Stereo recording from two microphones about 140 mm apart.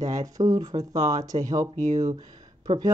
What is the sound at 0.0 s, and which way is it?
Speech, 25° right (ahead or behind).